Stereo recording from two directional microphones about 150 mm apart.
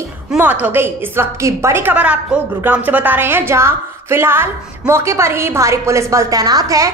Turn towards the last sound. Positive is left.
turn(degrees=-25)  # may be behind; listen again after turning